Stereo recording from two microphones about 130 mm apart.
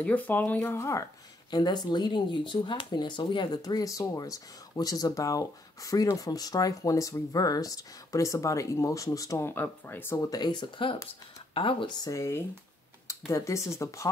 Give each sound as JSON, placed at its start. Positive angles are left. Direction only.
{"t": 0.0, "sound": "speech", "side_deg": 10}
{"t": 10.1, "sound": "speech", "side_deg": 35}
{"t": 12.1, "sound": "speech", "side_deg": 20}